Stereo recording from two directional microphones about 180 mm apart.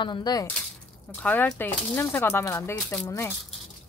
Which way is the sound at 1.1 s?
10° left (ahead or behind).